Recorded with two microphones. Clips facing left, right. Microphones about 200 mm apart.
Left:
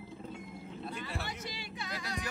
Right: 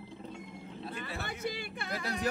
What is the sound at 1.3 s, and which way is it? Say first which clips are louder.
Speech: right 5 dB; 55° right (ahead or behind).